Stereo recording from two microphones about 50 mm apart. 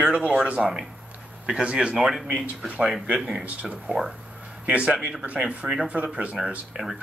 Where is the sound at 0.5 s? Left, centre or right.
Centre.